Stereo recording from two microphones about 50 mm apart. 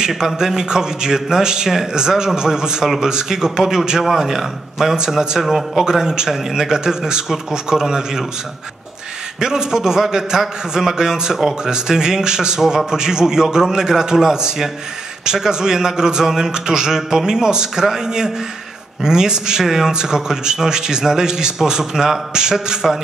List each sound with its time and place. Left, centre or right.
0.1 s a man's voice: centre
9.4 s a man's voice: centre